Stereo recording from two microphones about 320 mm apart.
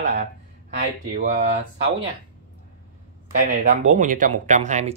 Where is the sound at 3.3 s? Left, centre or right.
Right.